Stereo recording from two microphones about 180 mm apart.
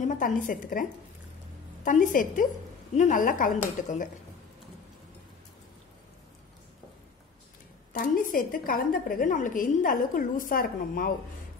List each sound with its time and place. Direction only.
0.0 s a woman's voice: 45° left (ahead or behind)
1.9 s a woman's voice: 45° left (ahead or behind)
7.9 s a woman's voice: 50° left (ahead or behind)